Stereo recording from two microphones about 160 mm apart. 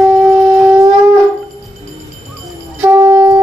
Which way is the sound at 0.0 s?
5° right (ahead or behind).